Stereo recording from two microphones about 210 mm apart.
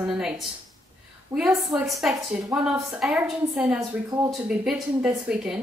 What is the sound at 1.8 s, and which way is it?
A woman's voice, centre (ahead or behind).